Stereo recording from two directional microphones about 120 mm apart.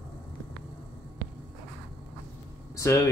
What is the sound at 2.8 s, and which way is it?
Speech, 25° left (ahead or behind).